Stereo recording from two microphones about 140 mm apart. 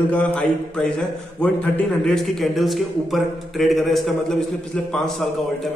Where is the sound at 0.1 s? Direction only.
10° left (ahead or behind).